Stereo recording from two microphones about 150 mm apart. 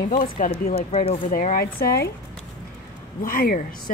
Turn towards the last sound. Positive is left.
turn(degrees=70)  # may be behind; listen again after turning